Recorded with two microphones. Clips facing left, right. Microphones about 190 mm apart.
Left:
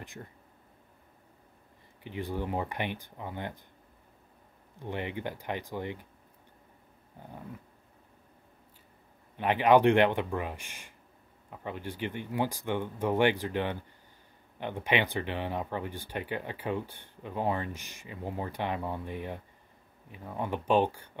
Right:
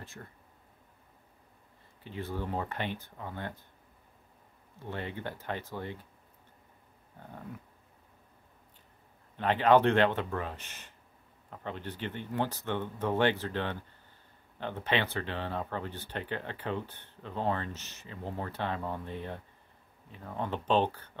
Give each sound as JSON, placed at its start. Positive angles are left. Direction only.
{"t": 0.0, "sound": "speech", "side_deg": 15}
{"t": 2.0, "sound": "speech", "side_deg": 15}
{"t": 4.7, "sound": "speech", "side_deg": 15}
{"t": 9.4, "sound": "speech", "side_deg": 15}